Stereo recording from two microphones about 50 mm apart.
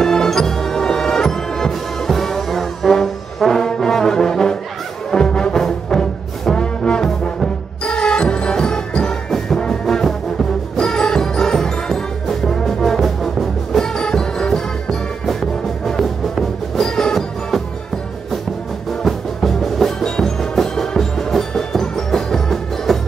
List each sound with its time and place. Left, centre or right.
0.0 s music: centre
19.0 s music: centre